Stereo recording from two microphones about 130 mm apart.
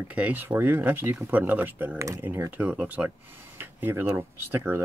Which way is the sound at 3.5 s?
15° right (ahead or behind).